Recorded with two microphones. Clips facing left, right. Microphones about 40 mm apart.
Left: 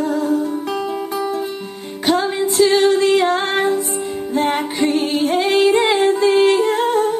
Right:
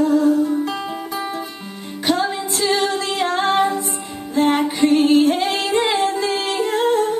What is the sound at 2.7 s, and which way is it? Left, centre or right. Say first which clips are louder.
Music: left 7 dB; left.